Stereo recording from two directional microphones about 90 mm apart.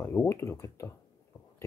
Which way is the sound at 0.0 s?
30° left (ahead or behind).